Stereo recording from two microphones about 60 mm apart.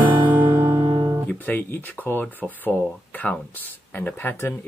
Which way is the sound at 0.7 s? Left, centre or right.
Right.